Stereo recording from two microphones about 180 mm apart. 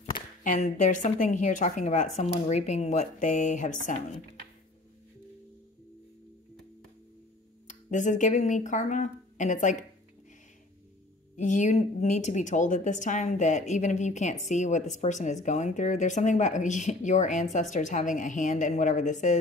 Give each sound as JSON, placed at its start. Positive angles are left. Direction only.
{"t": 0.4, "sound": "speech", "side_deg": 45}
{"t": 7.6, "sound": "speech", "side_deg": 45}
{"t": 11.3, "sound": "speech", "side_deg": 45}